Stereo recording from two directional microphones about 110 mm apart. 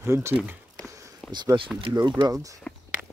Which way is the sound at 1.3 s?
40° right (ahead or behind).